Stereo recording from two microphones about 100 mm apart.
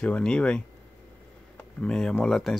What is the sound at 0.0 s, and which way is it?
Speech, 10° left (ahead or behind).